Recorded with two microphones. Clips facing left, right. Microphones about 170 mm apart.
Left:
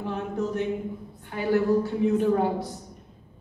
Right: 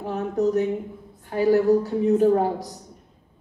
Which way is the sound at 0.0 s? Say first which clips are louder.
Right 6 dB; 40° right (ahead or behind).